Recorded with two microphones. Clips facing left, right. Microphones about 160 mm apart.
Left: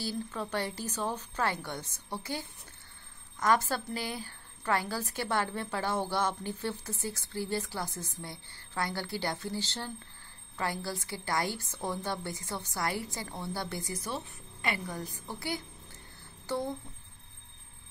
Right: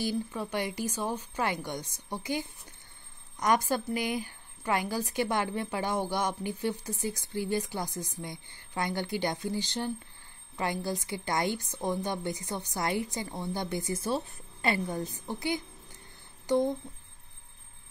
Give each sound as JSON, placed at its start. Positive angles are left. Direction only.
{"t": 0.0, "sound": "a woman's voice", "side_deg": -15}